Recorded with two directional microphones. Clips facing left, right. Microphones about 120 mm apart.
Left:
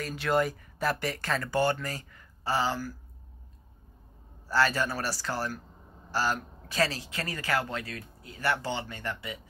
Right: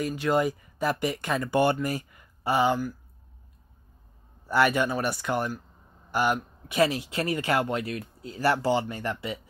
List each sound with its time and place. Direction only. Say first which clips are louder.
0.0 s speech: right 3 dB; 10° right (ahead or behind)
4.5 s speech: right 4 dB; 20° right (ahead or behind)